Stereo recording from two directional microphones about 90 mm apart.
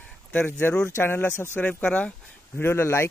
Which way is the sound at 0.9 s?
25° left (ahead or behind).